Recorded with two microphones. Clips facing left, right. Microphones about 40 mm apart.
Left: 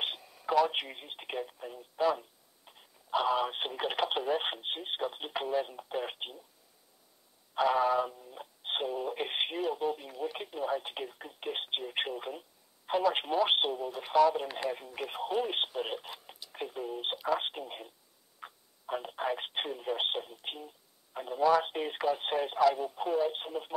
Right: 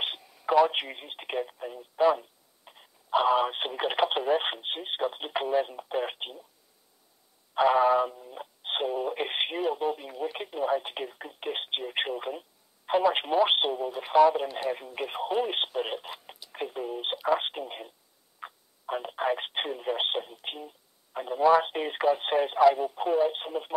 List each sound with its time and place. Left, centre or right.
0.5 s speech: centre
7.5 s speech: right